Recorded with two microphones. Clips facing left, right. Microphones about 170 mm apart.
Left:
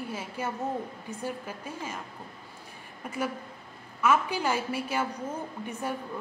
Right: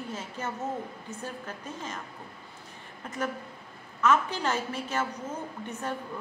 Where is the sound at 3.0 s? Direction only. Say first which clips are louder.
Left 1 dB; 10° left (ahead or behind).